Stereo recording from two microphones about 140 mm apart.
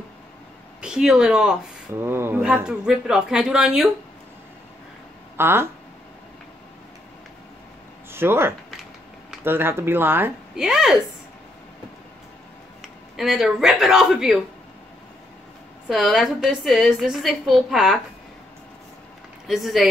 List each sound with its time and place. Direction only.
0.7 s speech: 5° right (ahead or behind)
2.0 s a woman's voice: 15° right (ahead or behind)
5.4 s speech: 15° right (ahead or behind)
8.1 s speech: 15° right (ahead or behind)
10.5 s a woman's voice: 5° right (ahead or behind)
12.8 s speech: centre (ahead or behind)
15.9 s a woman's voice: centre (ahead or behind)
19.4 s a woman's voice: centre (ahead or behind)